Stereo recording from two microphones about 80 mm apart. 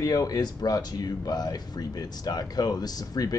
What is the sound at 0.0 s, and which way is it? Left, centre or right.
Speech, left.